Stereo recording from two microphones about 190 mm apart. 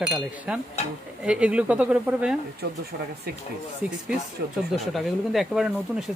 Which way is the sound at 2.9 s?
65° right (ahead or behind).